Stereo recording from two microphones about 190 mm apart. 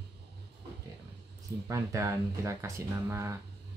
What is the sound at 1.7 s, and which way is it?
Speech, 15° right (ahead or behind).